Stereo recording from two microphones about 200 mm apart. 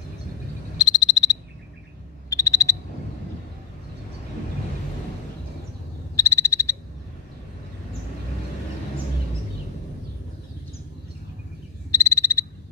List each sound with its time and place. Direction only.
0.7 s frog: 20° left (ahead or behind)
6.1 s frog: 15° left (ahead or behind)
11.9 s frog: 15° left (ahead or behind)